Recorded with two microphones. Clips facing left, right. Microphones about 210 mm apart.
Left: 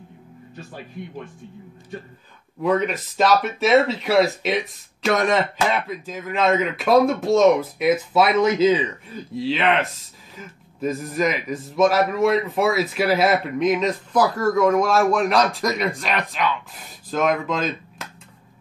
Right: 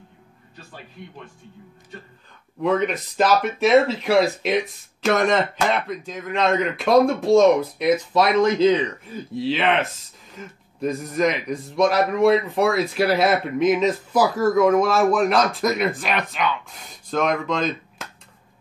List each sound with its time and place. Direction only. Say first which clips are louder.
2.6 s speech: even; centre (ahead or behind)